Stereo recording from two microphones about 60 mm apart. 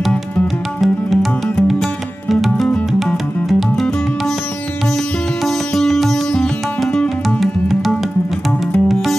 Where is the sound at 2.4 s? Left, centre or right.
Centre.